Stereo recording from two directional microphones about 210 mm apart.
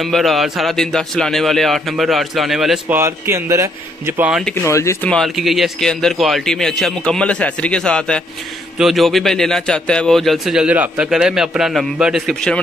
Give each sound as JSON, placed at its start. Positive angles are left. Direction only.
{"t": 0.0, "sound": "a man's voice", "side_deg": 0}
{"t": 3.0, "sound": "a man's voice", "side_deg": -10}
{"t": 4.6, "sound": "speech", "side_deg": 15}
{"t": 5.1, "sound": "a man's voice", "side_deg": 0}